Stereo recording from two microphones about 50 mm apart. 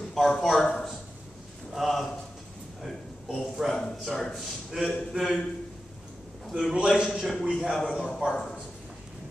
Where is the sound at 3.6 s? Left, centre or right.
Centre.